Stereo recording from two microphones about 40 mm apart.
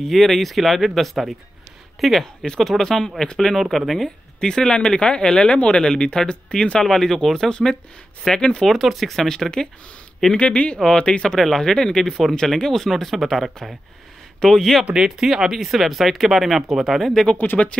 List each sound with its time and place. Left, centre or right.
0.1 s speech: centre
2.4 s speech: centre
4.4 s speech: centre
6.8 s speech: centre
8.6 s speech: centre
10.3 s speech: left
11.2 s speech: centre
15.0 s speech: centre
17.6 s speech: left